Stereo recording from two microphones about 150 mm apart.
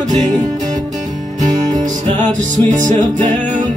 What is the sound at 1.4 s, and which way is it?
Music, 55° right (ahead or behind).